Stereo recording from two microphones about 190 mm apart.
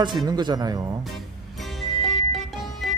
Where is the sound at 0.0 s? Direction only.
20° right (ahead or behind).